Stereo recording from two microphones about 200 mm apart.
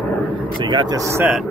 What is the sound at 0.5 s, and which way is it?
Speech, 25° right (ahead or behind).